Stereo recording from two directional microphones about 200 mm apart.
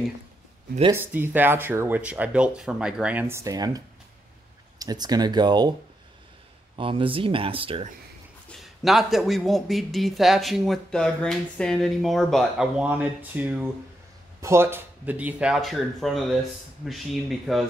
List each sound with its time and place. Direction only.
0.9 s speech: 10° right (ahead or behind)
6.8 s speech: 25° right (ahead or behind)
8.5 s a man's voice: centre (ahead or behind)